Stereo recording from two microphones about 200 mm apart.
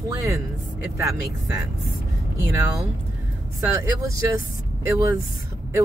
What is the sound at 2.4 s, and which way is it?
Speech, 15° right (ahead or behind).